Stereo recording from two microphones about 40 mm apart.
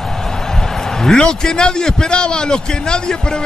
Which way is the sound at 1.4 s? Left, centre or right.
Centre.